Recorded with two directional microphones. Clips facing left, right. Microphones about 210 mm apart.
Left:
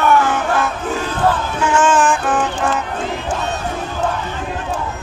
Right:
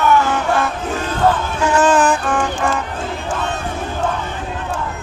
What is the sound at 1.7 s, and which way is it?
Music, 35° right (ahead or behind).